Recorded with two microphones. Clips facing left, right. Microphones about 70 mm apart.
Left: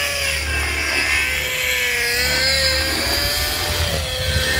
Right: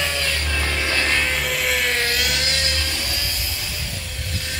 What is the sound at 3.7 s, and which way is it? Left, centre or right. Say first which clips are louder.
Music: left 9 dB; left.